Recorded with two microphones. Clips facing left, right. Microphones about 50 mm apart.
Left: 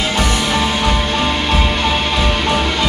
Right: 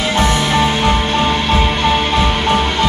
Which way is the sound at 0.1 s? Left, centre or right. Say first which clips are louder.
Right 2 dB; right.